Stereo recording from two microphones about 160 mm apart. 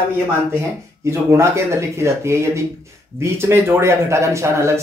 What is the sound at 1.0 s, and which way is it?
Speech, 15° right (ahead or behind).